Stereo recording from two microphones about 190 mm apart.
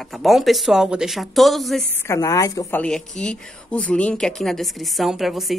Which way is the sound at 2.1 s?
15° left (ahead or behind).